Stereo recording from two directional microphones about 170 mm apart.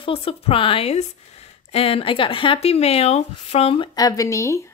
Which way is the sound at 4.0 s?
20° left (ahead or behind).